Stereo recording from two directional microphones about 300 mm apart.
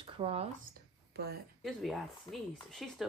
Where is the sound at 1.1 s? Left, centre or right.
Right.